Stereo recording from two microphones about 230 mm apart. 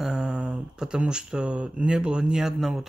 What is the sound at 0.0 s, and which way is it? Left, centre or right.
Speech, centre.